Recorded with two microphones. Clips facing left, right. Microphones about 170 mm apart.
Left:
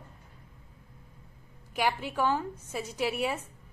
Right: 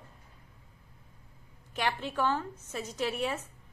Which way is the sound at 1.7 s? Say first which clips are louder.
Left 2 dB; 10° left (ahead or behind).